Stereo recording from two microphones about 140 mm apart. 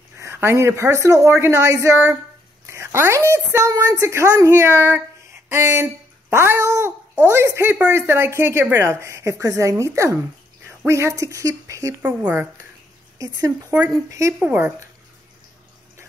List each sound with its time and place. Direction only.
0.2 s a woman's voice: 20° right (ahead or behind)
12.0 s speech: 10° right (ahead or behind)
13.2 s speech: 25° right (ahead or behind)